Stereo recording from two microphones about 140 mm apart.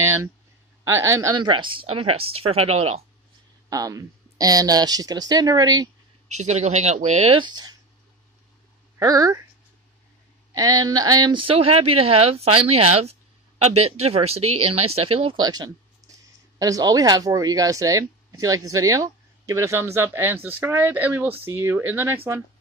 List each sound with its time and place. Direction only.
0.8 s speech: 20° right (ahead or behind)
1.4 s speech: 35° right (ahead or behind)
3.7 s speech: 25° right (ahead or behind)
6.2 s speech: 55° right (ahead or behind)
7.3 s speech: 30° right (ahead or behind)
9.0 s speech: 25° right (ahead or behind)
10.5 s speech: 25° right (ahead or behind); by 15.4 s 45° right (ahead or behind)
15.4 s speech: 30° right (ahead or behind)